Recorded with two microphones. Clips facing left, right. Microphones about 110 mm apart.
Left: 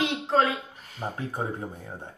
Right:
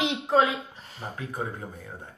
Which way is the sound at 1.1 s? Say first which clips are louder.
Even; 30° left (ahead or behind).